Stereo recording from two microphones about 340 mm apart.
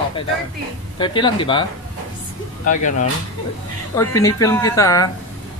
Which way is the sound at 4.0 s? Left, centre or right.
Centre.